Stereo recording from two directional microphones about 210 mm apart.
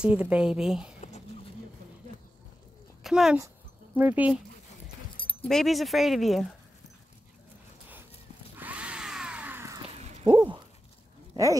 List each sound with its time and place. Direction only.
0.0 s speech: 5° right (ahead or behind)
3.0 s speech: centre (ahead or behind)
5.1 s keys jangling: 25° left (ahead or behind)
5.4 s speech: centre (ahead or behind)
8.5 s a sound: 5° right (ahead or behind)